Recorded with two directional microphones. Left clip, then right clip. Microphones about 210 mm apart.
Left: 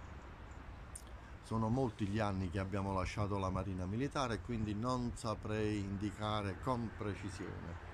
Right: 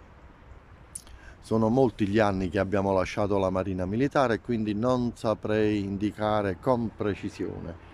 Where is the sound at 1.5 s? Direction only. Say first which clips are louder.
Right 15 dB; 45° right (ahead or behind).